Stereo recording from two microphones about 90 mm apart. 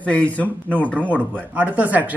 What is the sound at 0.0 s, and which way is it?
Speech, 15° left (ahead or behind).